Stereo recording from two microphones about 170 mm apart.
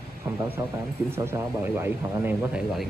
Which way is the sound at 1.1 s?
15° right (ahead or behind).